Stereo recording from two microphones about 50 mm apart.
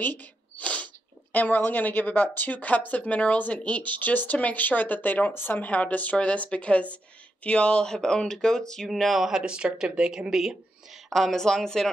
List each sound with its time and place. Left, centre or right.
0.0 s a woman's voice: left
0.6 s sneeze: left
1.3 s a woman's voice: left
5.3 s speech: left
5.6 s a woman's voice: left; by 8.8 s centre
8.8 s speech: centre
9.3 s speech: centre
11.1 s speech: centre